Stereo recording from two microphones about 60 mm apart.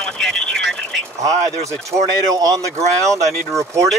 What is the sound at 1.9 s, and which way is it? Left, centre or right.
Speech, right.